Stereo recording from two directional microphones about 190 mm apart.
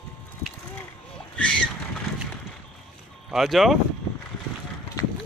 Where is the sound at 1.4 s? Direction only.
5° left (ahead or behind).